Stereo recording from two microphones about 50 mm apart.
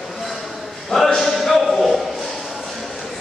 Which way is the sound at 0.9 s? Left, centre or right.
Centre.